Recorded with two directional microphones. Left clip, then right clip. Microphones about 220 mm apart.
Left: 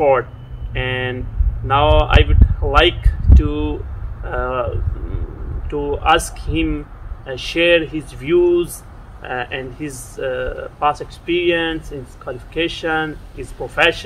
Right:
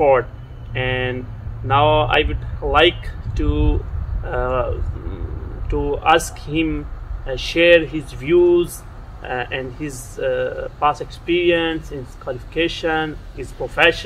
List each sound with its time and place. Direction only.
0.7 s speech: 15° left (ahead or behind)
5.7 s speech: 15° left (ahead or behind)